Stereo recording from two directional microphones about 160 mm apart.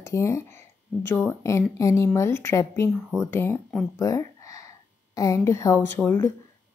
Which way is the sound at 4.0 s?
20° left (ahead or behind).